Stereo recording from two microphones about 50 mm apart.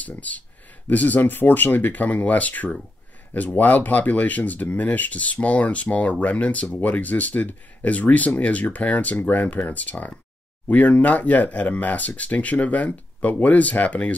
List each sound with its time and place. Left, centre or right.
0.0 s speech: left